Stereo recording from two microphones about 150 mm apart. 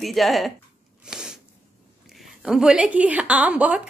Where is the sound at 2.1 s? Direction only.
5° right (ahead or behind).